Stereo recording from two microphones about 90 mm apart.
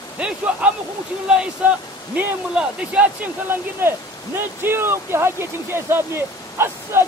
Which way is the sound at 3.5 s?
25° right (ahead or behind).